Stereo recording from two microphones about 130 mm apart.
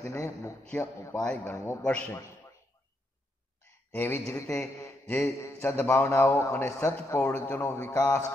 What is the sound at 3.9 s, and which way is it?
A man's voice, 15° left (ahead or behind).